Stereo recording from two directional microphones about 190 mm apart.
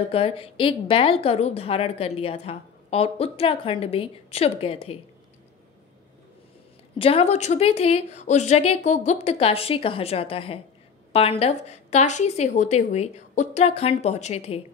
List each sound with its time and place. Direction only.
0.1 s a woman's voice: 30° left (ahead or behind)
7.0 s a woman's voice: 30° left (ahead or behind)